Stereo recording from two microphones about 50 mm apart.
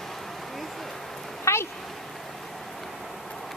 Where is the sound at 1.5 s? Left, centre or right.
Left.